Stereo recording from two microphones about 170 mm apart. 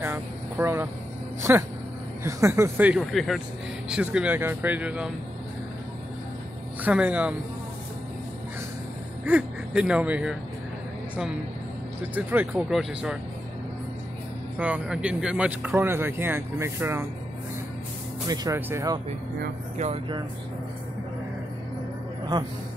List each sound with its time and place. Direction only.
0.0 s vehicle: 15° right (ahead or behind)
1.5 s speech: 10° right (ahead or behind)
6.8 s speech: 10° right (ahead or behind)
9.2 s speech: 5° right (ahead or behind)
12.0 s speech: 10° right (ahead or behind)
14.6 s speech: 10° right (ahead or behind)
18.2 s speech: 20° right (ahead or behind)
19.8 s speech: 35° right (ahead or behind)